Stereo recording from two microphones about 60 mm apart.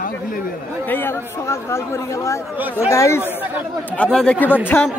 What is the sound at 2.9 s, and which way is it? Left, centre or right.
Speech, left.